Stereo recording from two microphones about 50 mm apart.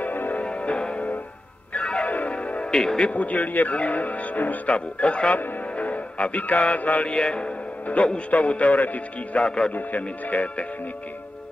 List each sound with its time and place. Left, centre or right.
0.0 s music: left
0.4 s music: left
2.7 s speech: centre
3.1 s speech: left
5.4 s music: left
7.1 s a man's voice: centre